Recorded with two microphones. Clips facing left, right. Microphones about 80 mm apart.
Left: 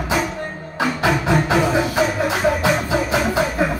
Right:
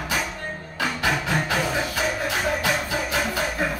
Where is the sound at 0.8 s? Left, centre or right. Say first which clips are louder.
Left 6 dB; left.